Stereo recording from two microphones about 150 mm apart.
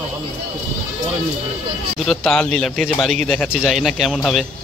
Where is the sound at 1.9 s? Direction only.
Centre (ahead or behind).